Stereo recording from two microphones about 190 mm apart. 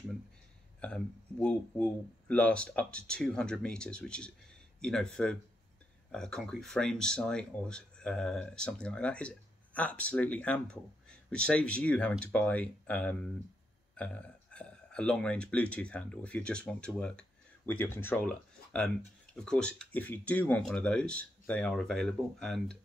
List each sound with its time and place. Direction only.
0.7 s speech: 5° left (ahead or behind)